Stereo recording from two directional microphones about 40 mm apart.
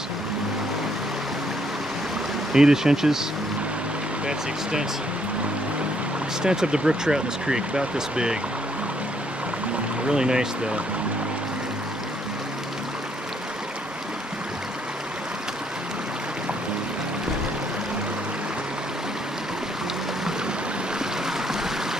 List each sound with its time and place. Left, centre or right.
2.5 s speech: centre
6.4 s speech: centre
10.0 s speech: centre